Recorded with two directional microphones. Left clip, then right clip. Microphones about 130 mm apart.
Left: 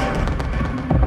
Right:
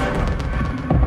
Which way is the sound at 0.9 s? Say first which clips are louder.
Even; 30° left (ahead or behind).